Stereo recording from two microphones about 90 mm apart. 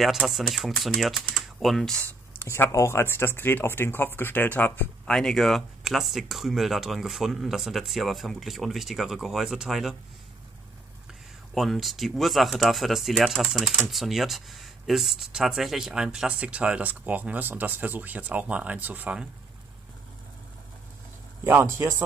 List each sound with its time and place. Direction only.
0.0 s speech: centre (ahead or behind)
2.3 s speech: 25° left (ahead or behind)
5.0 s speech: 5° left (ahead or behind)
11.5 s speech: centre (ahead or behind); by 19.2 s 15° right (ahead or behind)
21.5 s a man's voice: 25° right (ahead or behind)